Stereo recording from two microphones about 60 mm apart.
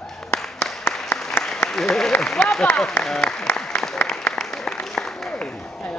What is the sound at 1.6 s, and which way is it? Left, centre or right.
Applause, centre.